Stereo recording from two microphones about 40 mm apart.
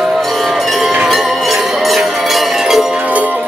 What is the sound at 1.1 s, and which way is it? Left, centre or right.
Music, centre.